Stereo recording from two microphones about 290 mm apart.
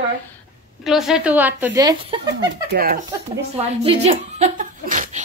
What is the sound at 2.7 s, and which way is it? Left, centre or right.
Speech, right.